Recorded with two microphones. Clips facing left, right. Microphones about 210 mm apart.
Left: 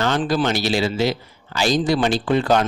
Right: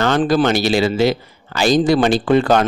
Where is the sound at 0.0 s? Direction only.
60° right (ahead or behind).